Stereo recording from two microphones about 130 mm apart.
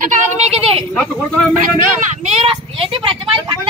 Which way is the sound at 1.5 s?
90° right.